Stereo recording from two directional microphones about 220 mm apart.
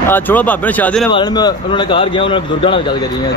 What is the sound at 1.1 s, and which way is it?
A man's voice, 20° left (ahead or behind).